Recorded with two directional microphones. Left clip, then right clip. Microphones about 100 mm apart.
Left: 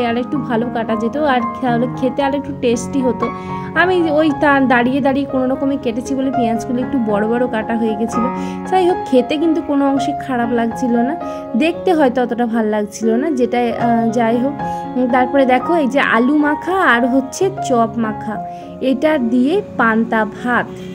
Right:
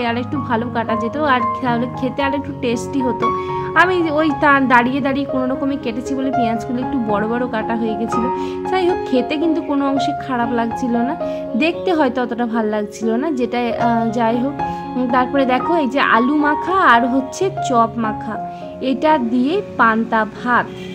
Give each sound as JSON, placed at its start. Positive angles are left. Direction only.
{"t": 0.0, "sound": "speech", "side_deg": 35}